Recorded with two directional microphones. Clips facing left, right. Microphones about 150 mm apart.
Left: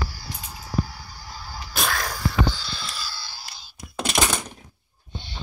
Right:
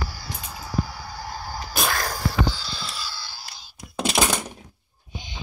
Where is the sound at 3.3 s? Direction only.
5° right (ahead or behind).